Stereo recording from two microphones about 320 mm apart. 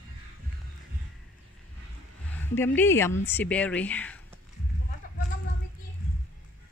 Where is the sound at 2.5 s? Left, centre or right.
Centre.